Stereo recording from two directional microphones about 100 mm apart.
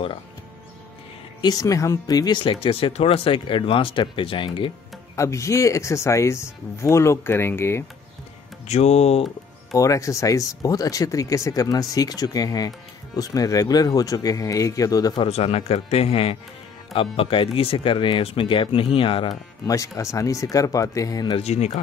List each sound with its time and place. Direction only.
1.4 s speech: 40° left (ahead or behind)
2.4 s speech: 70° left (ahead or behind)
5.1 s speech: 30° left (ahead or behind)
8.8 s speech: 90° left
9.8 s speech: 35° left (ahead or behind)
15.2 s speech: 85° left
16.9 s speech: 65° left (ahead or behind)
19.6 s speech: 35° left (ahead or behind)
21.4 s speech: 90° left